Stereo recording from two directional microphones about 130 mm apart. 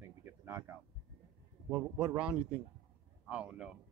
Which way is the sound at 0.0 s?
20° right (ahead or behind).